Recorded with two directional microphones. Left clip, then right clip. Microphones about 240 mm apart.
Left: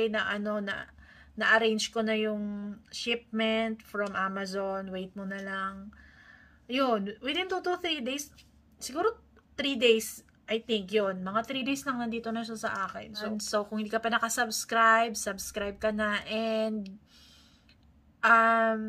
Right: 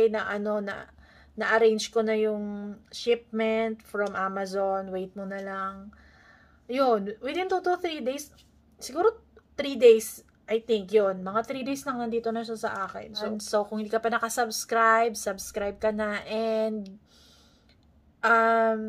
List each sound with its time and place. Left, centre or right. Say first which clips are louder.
0.0 s a woman's voice: right 5 dB; centre
2.3 s speech: right 3 dB; centre
2.7 s a woman's voice: right 7 dB; centre
18.4 s speech: right 2 dB; centre